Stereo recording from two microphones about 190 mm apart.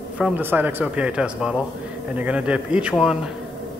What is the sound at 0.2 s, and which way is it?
Speech, 10° right (ahead or behind).